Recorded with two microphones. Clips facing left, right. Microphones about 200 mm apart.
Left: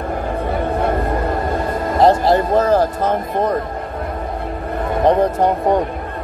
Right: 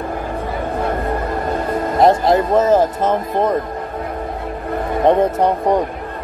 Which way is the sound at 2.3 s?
25° right (ahead or behind).